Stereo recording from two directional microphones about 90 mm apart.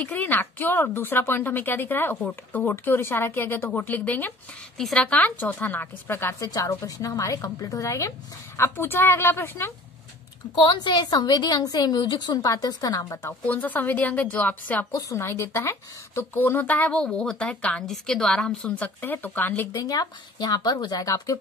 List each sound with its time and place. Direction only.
0.0 s a woman's voice: 20° left (ahead or behind)
4.7 s speech: 10° left (ahead or behind); by 6.5 s 25° left (ahead or behind)
6.5 s a woman's voice: 40° left (ahead or behind)
10.5 s speech: 60° left (ahead or behind)
12.0 s speech: 55° left (ahead or behind)
13.5 s a woman's voice: 20° left (ahead or behind)
14.9 s speech: 40° left (ahead or behind); by 18.9 s 10° left (ahead or behind)
18.9 s a woman's voice: 20° left (ahead or behind)
19.7 s speech: 45° left (ahead or behind)